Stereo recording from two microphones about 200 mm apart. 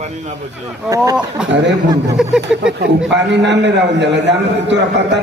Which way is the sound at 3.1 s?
60° right (ahead or behind).